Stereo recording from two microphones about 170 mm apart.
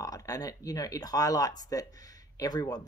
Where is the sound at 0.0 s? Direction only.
20° left (ahead or behind).